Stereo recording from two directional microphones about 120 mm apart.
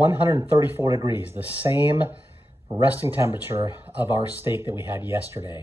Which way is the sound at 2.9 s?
15° right (ahead or behind).